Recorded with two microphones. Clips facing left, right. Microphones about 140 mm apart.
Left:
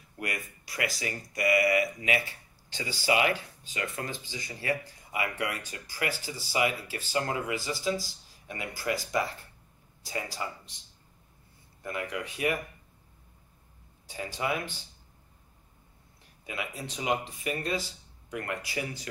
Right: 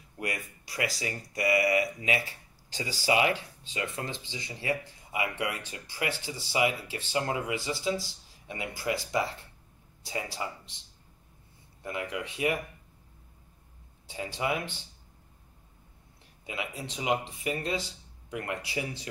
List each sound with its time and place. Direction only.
0.2 s speech: 30° right (ahead or behind)
11.8 s speech: 20° right (ahead or behind)
14.0 s speech: 25° right (ahead or behind)
16.4 s speech: 25° right (ahead or behind)